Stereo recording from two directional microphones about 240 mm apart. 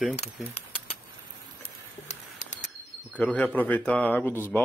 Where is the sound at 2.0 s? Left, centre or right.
Left.